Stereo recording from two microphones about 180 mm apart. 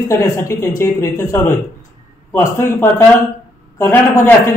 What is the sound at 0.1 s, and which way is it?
A man's voice, 15° left (ahead or behind).